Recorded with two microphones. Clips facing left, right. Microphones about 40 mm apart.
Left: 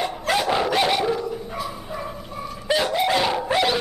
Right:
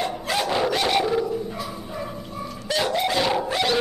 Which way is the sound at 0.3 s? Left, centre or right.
Centre.